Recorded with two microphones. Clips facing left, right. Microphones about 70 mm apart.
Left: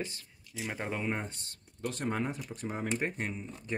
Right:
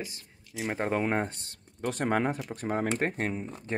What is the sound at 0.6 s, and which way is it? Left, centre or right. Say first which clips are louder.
Speech: right 7 dB; right.